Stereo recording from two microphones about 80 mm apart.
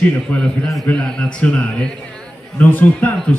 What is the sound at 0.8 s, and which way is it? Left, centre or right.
A man's voice, centre.